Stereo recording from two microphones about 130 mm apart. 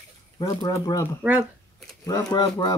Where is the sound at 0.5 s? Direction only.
25° left (ahead or behind).